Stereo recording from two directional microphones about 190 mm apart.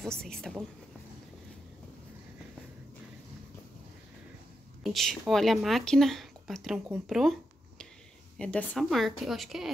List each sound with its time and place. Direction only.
0.0 s speech: 5° left (ahead or behind)
4.8 s speech: centre (ahead or behind)
8.4 s speech: 5° left (ahead or behind)